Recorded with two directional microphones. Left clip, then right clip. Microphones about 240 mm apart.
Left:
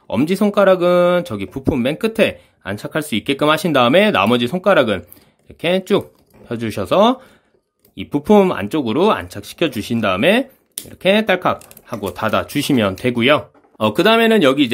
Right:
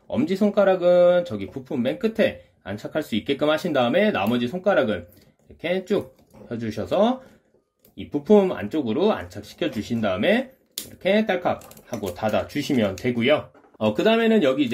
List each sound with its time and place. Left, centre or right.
0.1 s speech: left